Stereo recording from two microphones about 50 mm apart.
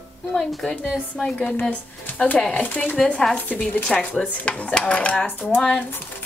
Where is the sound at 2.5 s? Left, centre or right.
Left.